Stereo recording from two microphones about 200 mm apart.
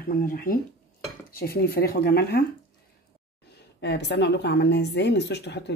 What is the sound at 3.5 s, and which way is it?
A woman's voice, 55° left (ahead or behind).